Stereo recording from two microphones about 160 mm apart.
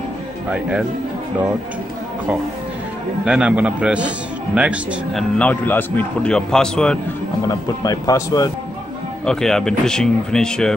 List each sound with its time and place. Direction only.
0.5 s a man's voice: 5° right (ahead or behind)
3.3 s a man's voice: 5° right (ahead or behind)
5.4 s a man's voice: 10° left (ahead or behind)
7.4 s speech: 25° left (ahead or behind)
9.2 s speech: 5° left (ahead or behind)